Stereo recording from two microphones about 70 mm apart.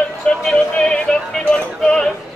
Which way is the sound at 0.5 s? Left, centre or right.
Centre.